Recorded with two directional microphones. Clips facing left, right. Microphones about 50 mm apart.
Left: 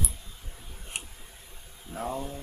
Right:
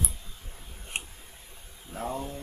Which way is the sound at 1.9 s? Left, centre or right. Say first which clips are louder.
Even; centre.